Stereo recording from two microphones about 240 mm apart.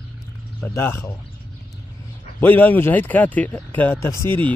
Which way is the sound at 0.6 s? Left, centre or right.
Centre.